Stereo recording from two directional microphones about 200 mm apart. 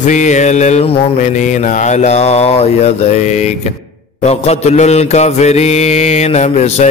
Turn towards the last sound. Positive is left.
turn(degrees=35)  # may be behind; listen again after turning